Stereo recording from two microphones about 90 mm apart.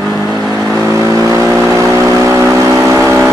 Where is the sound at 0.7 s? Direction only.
40° right (ahead or behind).